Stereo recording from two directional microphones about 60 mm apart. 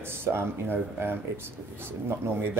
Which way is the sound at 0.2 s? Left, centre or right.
Right.